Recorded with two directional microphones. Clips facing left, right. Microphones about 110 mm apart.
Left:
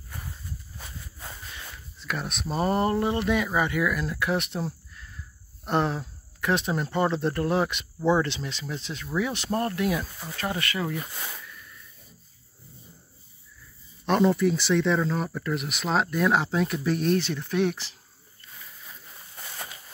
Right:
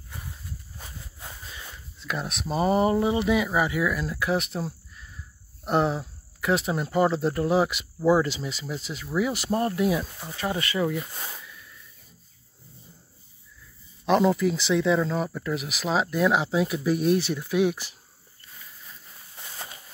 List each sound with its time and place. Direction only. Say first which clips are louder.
2.0 s speech: right 1 dB; centre (ahead or behind)
10.7 s speech: right 4 dB; 15° right (ahead or behind)
14.0 s speech: right 1 dB; centre (ahead or behind)